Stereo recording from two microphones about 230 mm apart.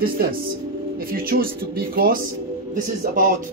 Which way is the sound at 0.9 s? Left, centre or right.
Right.